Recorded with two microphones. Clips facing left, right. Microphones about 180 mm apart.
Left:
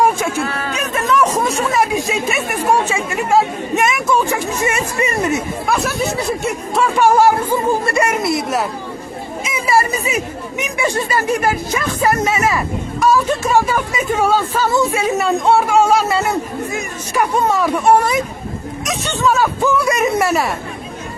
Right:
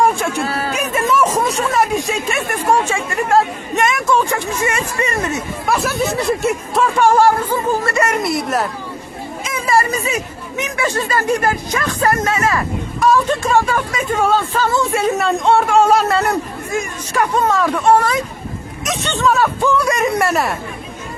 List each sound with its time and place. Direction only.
0.0 s a man's voice: centre (ahead or behind)
0.4 s speech: 35° right (ahead or behind)
0.7 s speech: 5° right (ahead or behind)
4.6 s speech: 15° left (ahead or behind)
5.7 s speech: centre (ahead or behind)
8.2 s speech: centre (ahead or behind)
15.0 s speech: centre (ahead or behind)
17.1 s speech: 15° left (ahead or behind)
18.9 s speech: centre (ahead or behind)